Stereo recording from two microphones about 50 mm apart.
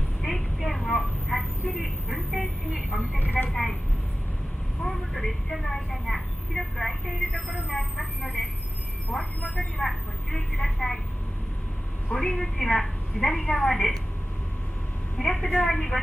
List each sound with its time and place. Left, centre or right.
0.2 s a sound: centre
1.3 s vehicle: centre
1.7 s vehicle: centre
3.2 s vehicle: left
3.4 s vehicle: centre
4.8 s vehicle: centre
7.3 s vehicle: left
9.4 s vehicle: left
9.8 s vehicle: centre
12.1 s a woman's voice: centre
15.1 s a sound: centre
15.7 s speech: centre